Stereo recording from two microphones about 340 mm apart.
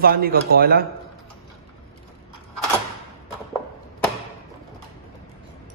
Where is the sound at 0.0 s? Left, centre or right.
Right.